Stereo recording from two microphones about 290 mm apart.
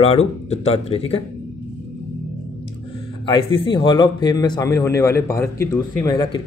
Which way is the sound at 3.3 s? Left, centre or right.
Centre.